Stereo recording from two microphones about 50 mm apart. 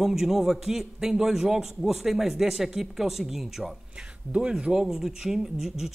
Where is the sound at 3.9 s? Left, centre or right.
Right.